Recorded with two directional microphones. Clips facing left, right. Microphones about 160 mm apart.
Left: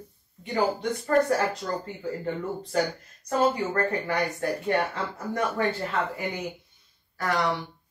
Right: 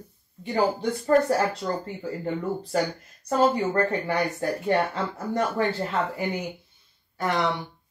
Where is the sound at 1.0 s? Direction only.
30° right (ahead or behind).